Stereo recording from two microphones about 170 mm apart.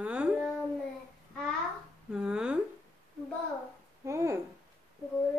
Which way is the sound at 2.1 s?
5° right (ahead or behind).